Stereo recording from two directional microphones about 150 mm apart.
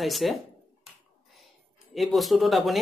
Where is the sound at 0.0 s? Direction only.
Centre (ahead or behind).